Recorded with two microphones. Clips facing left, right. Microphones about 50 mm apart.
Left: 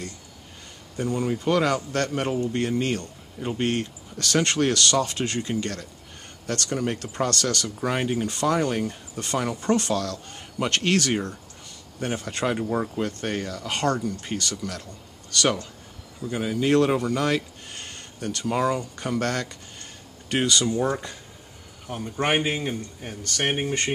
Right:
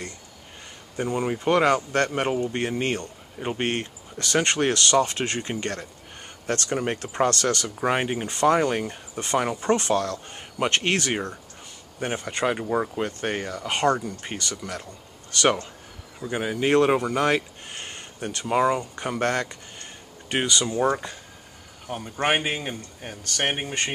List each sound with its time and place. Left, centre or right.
0.9 s speech: right
4.2 s a man's voice: right
21.8 s a man's voice: centre